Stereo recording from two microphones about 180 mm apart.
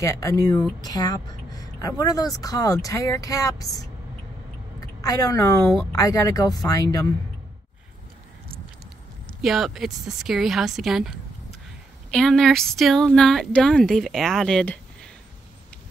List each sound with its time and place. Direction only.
0.0 s a woman's voice: 15° left (ahead or behind)
9.4 s speech: centre (ahead or behind)